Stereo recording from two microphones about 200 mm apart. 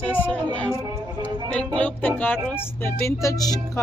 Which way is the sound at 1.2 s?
5° left (ahead or behind).